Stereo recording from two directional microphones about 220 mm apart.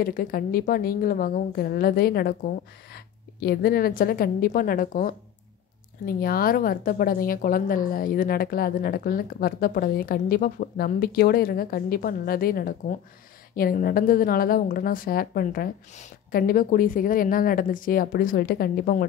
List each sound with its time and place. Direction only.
0.0 s a woman's voice: 40° left (ahead or behind)